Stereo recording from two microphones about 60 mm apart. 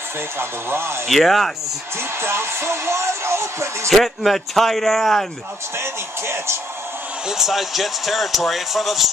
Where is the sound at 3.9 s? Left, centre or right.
Centre.